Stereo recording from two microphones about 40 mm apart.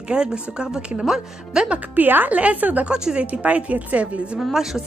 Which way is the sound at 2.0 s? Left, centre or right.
Right.